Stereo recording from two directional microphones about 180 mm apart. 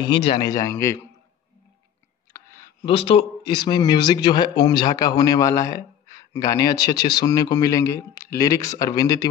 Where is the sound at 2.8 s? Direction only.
30° left (ahead or behind).